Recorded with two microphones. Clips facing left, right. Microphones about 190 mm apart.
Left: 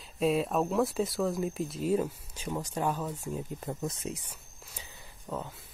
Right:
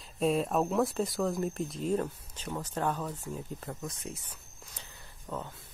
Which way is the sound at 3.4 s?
20° left (ahead or behind).